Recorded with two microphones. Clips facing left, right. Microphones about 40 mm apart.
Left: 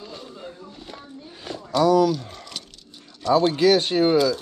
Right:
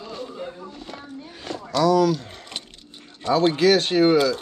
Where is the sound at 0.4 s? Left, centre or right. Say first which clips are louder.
Right 5 dB; right.